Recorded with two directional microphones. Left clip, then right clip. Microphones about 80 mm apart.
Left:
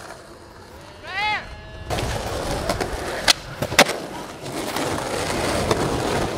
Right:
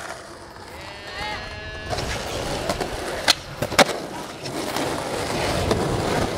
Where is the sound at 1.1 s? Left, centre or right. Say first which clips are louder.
Left 8 dB; left.